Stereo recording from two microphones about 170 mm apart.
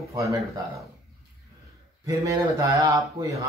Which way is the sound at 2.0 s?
20° right (ahead or behind).